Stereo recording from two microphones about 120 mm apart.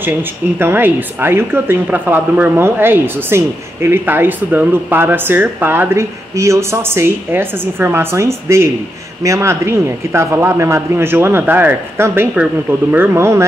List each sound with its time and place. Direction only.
0.0 s speech: 15° right (ahead or behind)